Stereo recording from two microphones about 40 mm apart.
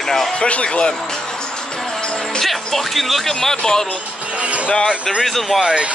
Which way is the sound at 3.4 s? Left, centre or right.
Centre.